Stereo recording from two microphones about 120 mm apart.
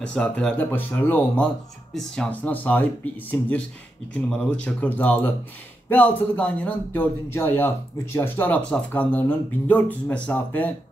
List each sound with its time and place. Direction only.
0.0 s speech: 10° left (ahead or behind)